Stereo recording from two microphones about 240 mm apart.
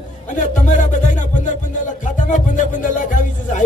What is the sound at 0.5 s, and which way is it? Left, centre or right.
Speech, left.